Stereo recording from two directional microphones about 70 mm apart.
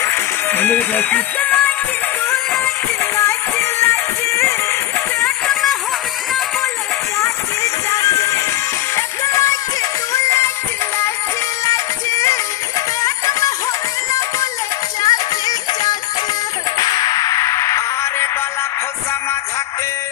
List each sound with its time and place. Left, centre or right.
0.0 s music: left
3.0 s music: left
5.5 s music: centre
7.2 s a sound: left
8.9 s music: left
11.6 s music: left
15.0 s music: left